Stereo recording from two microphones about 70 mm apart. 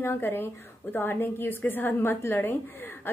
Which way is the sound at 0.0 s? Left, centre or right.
Left.